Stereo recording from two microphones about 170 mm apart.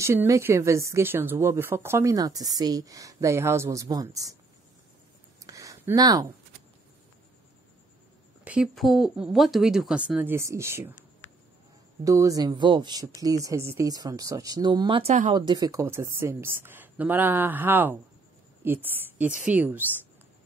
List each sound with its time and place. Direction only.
0.0 s speech: 15° right (ahead or behind)
5.4 s a sound: 20° right (ahead or behind)
8.5 s speech: 5° right (ahead or behind)
12.0 s a woman's voice: 20° right (ahead or behind)